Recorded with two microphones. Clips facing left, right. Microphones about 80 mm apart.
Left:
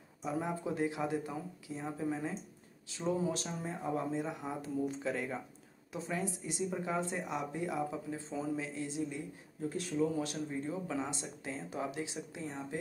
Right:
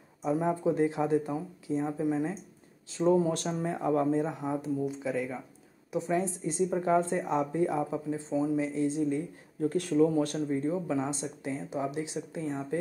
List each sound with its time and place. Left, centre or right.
0.2 s speech: right
2.9 s speech: right
3.6 s speech: right
4.0 s speech: right
4.4 s speech: centre
5.9 s speech: right
9.6 s speech: right
10.6 s speech: right